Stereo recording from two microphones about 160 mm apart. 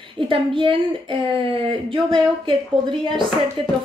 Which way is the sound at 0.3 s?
30° right (ahead or behind).